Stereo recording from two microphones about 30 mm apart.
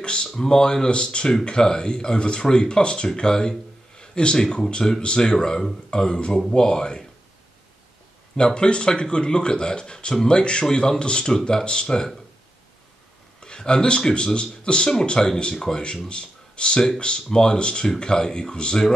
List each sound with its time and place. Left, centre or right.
0.0 s speech: left
0.8 s speech: left
8.4 s speech: left
13.4 s speech: left
14.1 s speech: left
15.1 s speech: centre